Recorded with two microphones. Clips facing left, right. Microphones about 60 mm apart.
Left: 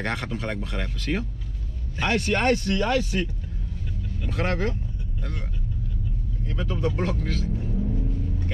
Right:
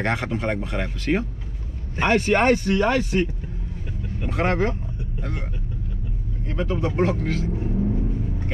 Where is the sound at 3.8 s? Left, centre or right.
Right.